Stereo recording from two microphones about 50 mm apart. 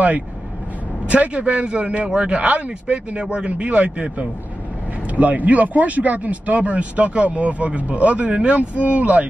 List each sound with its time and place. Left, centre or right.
1.0 s speech: right